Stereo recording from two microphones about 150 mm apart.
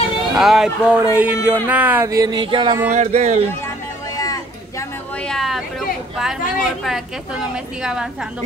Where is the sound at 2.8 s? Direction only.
50° right (ahead or behind).